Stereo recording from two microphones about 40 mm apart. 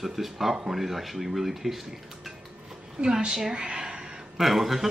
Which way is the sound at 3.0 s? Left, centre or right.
Centre.